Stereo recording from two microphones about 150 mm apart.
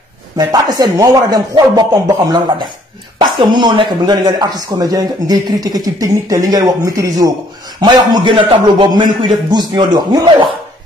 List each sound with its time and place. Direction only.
0.4 s speech: 25° right (ahead or behind)